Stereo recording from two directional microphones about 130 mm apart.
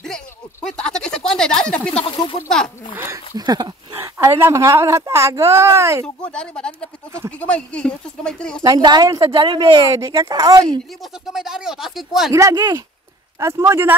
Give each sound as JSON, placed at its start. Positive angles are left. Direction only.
{"t": 0.7, "sound": "a sound", "side_deg": 5}
{"t": 2.0, "sound": "a sound", "side_deg": 40}
{"t": 3.3, "sound": "speech", "side_deg": -30}
{"t": 6.0, "sound": "speech", "side_deg": 5}
{"t": 7.1, "sound": "speech", "side_deg": -20}
{"t": 7.3, "sound": "speech", "side_deg": 10}
{"t": 8.6, "sound": "speech", "side_deg": -35}
{"t": 11.0, "sound": "speech", "side_deg": -5}
{"t": 12.3, "sound": "speech", "side_deg": -25}